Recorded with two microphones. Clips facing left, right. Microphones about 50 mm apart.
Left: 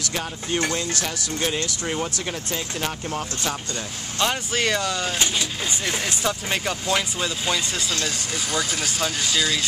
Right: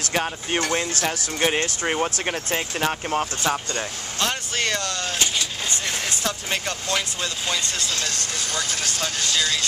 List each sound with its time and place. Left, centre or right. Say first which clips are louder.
0.1 s speech: right 4 dB; right
4.2 s speech: left 2 dB; centre